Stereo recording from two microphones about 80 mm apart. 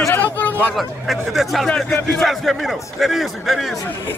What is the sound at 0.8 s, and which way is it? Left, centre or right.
A man's voice, centre.